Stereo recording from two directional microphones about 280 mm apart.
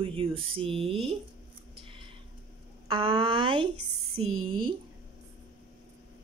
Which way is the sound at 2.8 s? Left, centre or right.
Centre.